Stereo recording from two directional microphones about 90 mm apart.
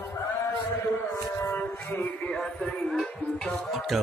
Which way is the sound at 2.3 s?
5° left (ahead or behind).